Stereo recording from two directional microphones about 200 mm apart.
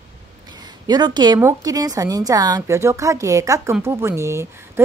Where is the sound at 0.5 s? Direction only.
20° right (ahead or behind).